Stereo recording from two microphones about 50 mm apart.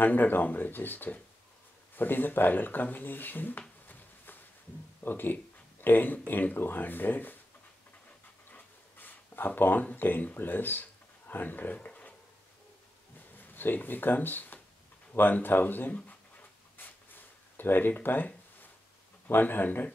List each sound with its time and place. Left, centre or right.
0.0 s speech: left
8.5 s dog: left
9.6 s speech: left
13.4 s speech: left
15.9 s writing: left
19.2 s speech: left